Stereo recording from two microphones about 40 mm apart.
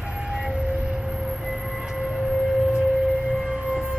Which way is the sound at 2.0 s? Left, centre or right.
Centre.